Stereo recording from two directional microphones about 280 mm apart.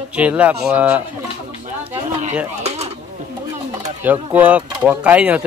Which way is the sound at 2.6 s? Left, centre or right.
Right.